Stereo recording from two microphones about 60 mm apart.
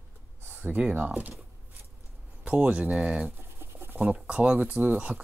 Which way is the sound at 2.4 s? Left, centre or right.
Right.